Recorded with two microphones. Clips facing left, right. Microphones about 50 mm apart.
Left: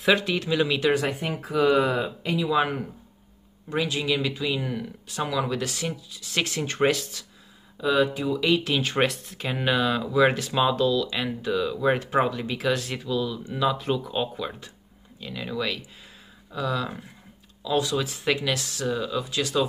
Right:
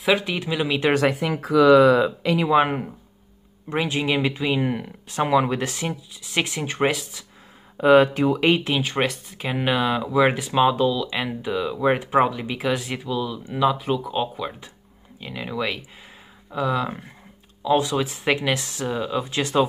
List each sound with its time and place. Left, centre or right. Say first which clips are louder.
0.2 s speech: left 1 dB; centre
0.9 s speech: right 5 dB; right
2.4 s speech: right 4 dB; right; by 7.2 s centre
7.7 s speech: right 8 dB; right
8.8 s speech: even; centre
9.4 s speech: right 2 dB; centre
15.1 s speech: right 2 dB; centre